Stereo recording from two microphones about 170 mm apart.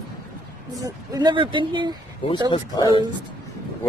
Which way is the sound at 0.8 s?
25° right (ahead or behind).